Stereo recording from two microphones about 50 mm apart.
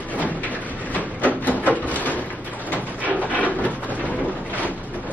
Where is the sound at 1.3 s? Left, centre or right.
Left.